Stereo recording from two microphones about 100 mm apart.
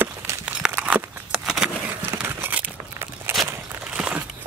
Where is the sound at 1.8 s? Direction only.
20° right (ahead or behind).